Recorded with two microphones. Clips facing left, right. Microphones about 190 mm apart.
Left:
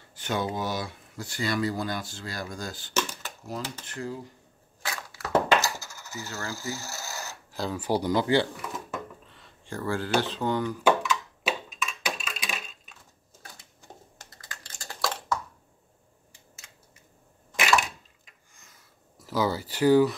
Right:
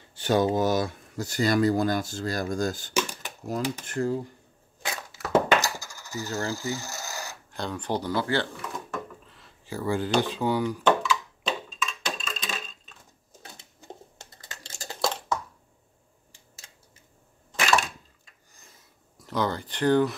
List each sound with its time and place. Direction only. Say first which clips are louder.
0.1 s speech: right 7 dB; 35° right (ahead or behind)
2.9 s a sound: right 2 dB; 15° right (ahead or behind)
3.8 s speech: right 8 dB; 45° right (ahead or behind)
4.8 s a sound: right 2 dB; 20° right (ahead or behind)
6.2 s speech: right 7 dB; 35° right (ahead or behind)
6.5 s filing: right 4 dB; 15° right (ahead or behind)
7.5 s speech: left 2 dB; 5° left (ahead or behind)
8.7 s drawer open or close: right 1 dB; centre (ahead or behind); by 10.1 s 15° right (ahead or behind)
10.2 s speech: right 2 dB; 10° right (ahead or behind)
11.4 s a sound: even; 10° left (ahead or behind)
13.4 s a sound: right 2 dB; 20° right (ahead or behind)
19.1 s speech: left 1 dB; 5° left (ahead or behind)